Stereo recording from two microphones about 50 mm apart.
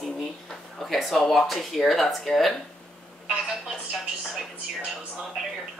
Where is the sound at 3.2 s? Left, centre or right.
Centre.